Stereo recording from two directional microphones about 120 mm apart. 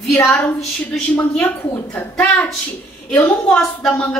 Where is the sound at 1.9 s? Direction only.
10° left (ahead or behind).